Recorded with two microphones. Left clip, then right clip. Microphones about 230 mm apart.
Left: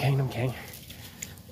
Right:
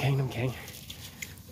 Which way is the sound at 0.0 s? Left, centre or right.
Centre.